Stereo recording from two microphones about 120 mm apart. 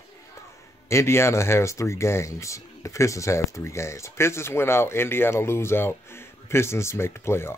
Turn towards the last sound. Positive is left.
turn(degrees=20)  # may be behind; listen again after turning